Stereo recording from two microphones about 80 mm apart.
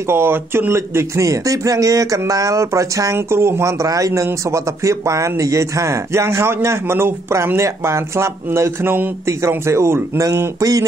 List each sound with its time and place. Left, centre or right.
0.1 s speech: right